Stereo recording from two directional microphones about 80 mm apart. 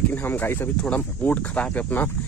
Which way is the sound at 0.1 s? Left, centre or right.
Left.